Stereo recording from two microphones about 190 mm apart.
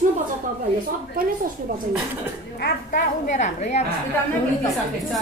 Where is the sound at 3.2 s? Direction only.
40° left (ahead or behind).